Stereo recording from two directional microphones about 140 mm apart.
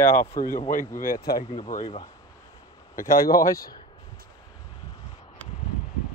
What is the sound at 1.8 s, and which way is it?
Speech, 40° left (ahead or behind).